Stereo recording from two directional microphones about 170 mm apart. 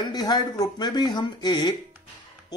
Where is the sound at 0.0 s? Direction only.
25° left (ahead or behind).